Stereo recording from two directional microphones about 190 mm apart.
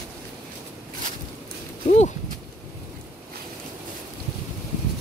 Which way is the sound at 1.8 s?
40° left (ahead or behind).